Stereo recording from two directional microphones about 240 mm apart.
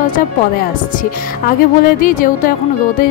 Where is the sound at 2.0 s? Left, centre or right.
Left.